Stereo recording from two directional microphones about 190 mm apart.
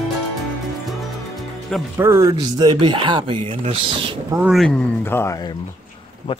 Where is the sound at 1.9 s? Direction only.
15° right (ahead or behind).